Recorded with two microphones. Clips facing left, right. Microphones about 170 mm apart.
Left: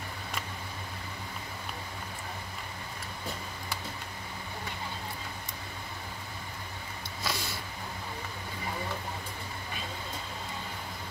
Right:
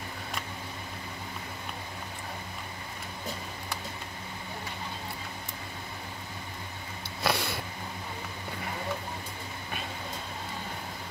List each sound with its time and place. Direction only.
7.2 s sniff: 65° right (ahead or behind)